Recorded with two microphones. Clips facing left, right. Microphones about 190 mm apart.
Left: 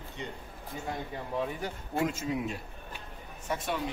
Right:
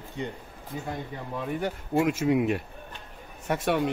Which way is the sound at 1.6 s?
65° right (ahead or behind).